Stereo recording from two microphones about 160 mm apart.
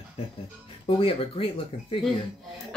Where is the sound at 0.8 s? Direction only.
35° left (ahead or behind).